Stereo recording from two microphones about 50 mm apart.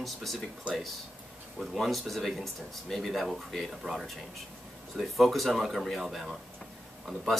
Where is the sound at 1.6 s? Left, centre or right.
Centre.